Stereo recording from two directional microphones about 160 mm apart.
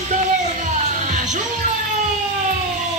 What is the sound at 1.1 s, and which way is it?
Music, 50° right (ahead or behind).